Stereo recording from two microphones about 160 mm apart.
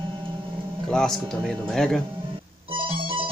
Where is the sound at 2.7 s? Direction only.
30° right (ahead or behind).